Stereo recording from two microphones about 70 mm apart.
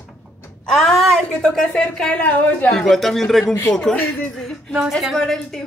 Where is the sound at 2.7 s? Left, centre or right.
Centre.